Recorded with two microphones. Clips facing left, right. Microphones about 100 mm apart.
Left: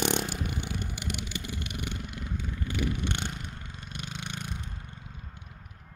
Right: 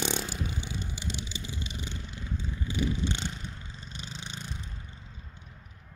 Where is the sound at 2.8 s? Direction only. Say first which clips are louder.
Right 1 dB; 60° left (ahead or behind).